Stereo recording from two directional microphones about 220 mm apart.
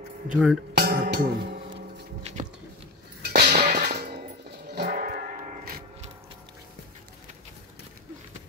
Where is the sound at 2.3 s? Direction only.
30° right (ahead or behind).